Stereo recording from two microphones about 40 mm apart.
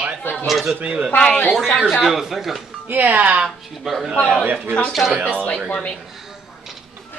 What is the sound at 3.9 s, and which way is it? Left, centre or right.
Speech, centre.